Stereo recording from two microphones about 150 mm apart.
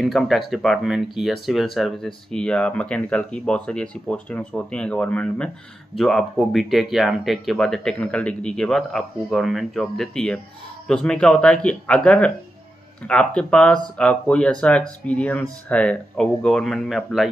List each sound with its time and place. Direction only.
0.0 s speech: centre (ahead or behind)